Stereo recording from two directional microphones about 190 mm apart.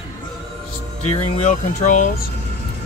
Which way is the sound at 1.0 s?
35° left (ahead or behind).